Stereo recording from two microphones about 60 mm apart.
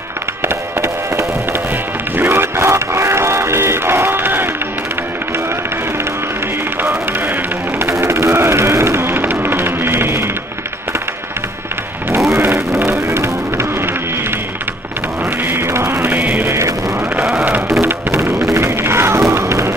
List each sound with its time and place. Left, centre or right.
0.4 s music: right
6.8 s music: right
8.0 s music: right
12.5 s music: right
15.4 s music: right
16.4 s music: right
18.1 s music: right